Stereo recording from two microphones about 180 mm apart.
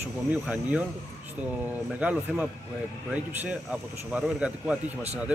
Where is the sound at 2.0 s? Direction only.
5° right (ahead or behind).